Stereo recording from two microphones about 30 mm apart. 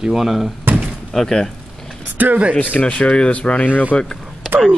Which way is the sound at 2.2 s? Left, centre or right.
Right.